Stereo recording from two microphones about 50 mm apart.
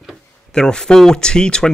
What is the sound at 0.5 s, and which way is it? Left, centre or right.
Speech, centre.